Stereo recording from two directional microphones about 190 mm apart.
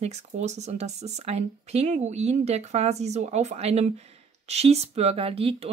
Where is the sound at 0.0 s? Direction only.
35° right (ahead or behind).